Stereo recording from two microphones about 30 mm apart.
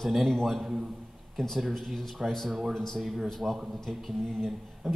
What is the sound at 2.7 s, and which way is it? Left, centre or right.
Speech, centre.